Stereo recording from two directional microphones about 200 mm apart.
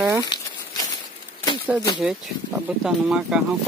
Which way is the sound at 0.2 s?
20° left (ahead or behind).